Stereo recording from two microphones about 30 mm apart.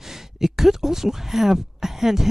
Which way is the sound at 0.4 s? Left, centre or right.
Centre.